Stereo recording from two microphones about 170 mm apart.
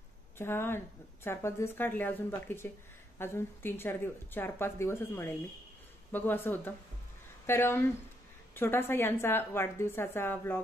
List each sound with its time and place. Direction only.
0.4 s speech: 15° left (ahead or behind)